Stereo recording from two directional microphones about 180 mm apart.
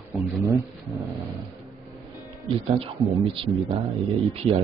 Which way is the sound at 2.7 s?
30° right (ahead or behind).